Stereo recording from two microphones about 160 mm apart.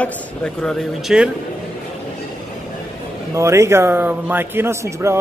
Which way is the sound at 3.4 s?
20° right (ahead or behind).